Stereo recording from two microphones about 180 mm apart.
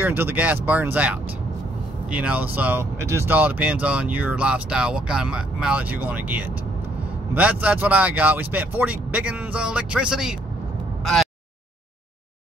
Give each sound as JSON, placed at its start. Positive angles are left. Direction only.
{"t": 0.0, "sound": "speech", "side_deg": -10}
{"t": 7.6, "sound": "speech", "side_deg": -10}